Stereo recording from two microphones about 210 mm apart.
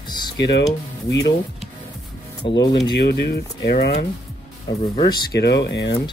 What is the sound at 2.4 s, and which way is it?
Speech, 20° left (ahead or behind).